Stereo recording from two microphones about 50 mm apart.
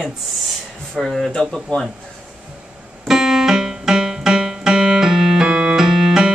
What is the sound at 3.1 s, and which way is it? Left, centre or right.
Keyboard, centre.